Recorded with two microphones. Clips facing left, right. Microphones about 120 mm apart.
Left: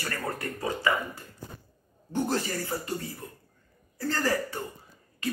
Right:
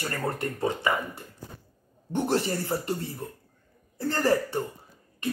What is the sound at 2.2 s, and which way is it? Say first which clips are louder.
Speech: right 3 dB; 25° right (ahead or behind).